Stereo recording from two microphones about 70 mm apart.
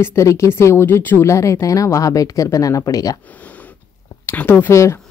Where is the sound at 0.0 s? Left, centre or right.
Left.